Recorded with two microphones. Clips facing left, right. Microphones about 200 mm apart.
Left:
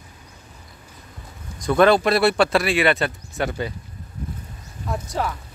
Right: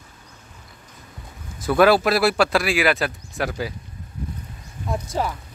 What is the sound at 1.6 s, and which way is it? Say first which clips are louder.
Speech: even; 5° right (ahead or behind).